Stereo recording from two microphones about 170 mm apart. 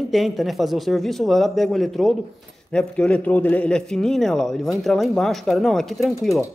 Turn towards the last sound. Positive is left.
turn(degrees=0)  # may be behind; listen again after turning